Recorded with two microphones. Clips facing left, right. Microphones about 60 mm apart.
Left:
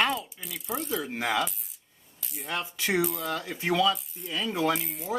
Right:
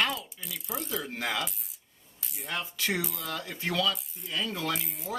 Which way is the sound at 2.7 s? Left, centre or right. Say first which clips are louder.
Left 7 dB; left.